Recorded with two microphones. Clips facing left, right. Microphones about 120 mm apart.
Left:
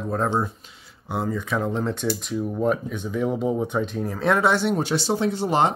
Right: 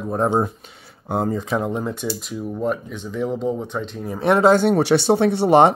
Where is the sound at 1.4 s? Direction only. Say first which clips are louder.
Right 2 dB; 20° right (ahead or behind); by 4.0 s 5° left (ahead or behind).